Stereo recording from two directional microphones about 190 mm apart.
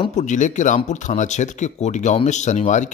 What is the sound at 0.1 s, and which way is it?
Speech, 40° left (ahead or behind).